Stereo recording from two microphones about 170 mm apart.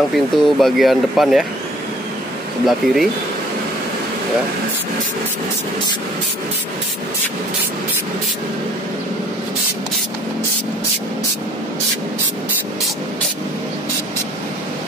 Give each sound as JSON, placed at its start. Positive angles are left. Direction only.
{"t": 0.1, "sound": "speech", "side_deg": 0}
{"t": 2.6, "sound": "speech", "side_deg": 0}